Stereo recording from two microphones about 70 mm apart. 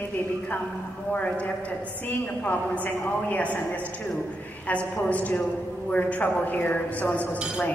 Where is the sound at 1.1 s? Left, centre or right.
Left.